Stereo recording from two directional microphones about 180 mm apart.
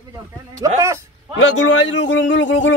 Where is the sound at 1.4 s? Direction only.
90° left.